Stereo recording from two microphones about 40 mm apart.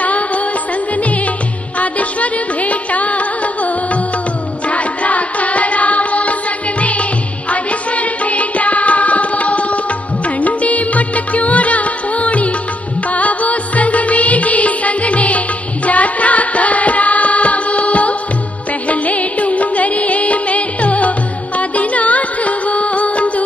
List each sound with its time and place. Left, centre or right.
1.8 s music: left